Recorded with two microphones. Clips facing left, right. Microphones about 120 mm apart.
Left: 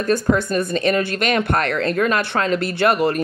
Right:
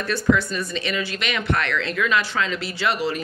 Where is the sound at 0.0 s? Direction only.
45° left (ahead or behind).